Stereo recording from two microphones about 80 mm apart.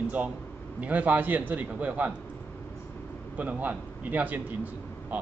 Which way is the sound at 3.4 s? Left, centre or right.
Centre.